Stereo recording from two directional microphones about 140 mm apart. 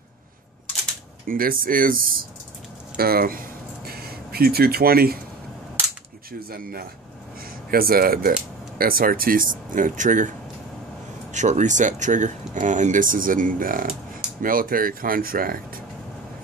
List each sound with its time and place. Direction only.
1.2 s speech: 90° right
3.0 s a sound: 90° right
6.5 s speech: 90° right; by 10.3 s 65° right (ahead or behind)
11.3 s speech: 60° right (ahead or behind); by 15.8 s 90° right